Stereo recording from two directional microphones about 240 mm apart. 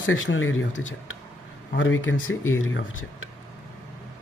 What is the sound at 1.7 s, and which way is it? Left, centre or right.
Speech, left.